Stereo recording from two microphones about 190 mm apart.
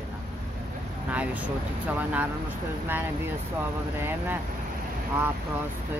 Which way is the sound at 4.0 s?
10° right (ahead or behind).